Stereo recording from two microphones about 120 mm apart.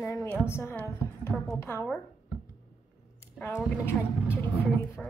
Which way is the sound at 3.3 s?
20° left (ahead or behind).